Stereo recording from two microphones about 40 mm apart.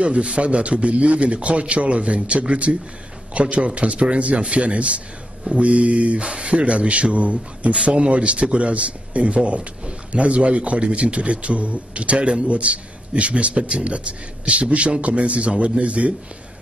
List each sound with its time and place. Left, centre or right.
0.0 s a man's voice: right